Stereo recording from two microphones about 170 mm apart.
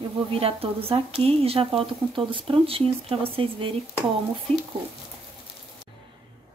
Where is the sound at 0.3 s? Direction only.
35° right (ahead or behind).